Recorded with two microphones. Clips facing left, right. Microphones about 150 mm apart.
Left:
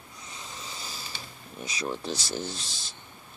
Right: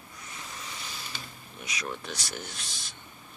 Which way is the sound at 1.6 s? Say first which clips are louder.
Left 4 dB; 30° left (ahead or behind).